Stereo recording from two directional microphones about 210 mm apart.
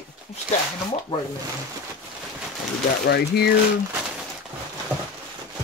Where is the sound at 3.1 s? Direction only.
50° left (ahead or behind).